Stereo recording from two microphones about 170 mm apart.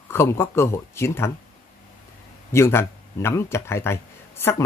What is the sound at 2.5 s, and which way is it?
Speech, 15° left (ahead or behind).